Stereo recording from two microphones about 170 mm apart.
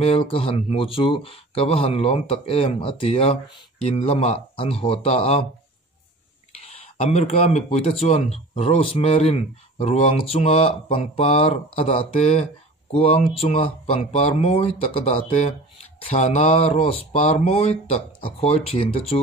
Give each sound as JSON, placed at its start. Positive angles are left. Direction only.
{"t": 0.0, "sound": "speech", "side_deg": 35}
{"t": 6.6, "sound": "speech", "side_deg": 40}